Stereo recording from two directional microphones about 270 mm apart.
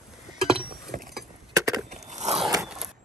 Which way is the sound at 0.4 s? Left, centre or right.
Centre.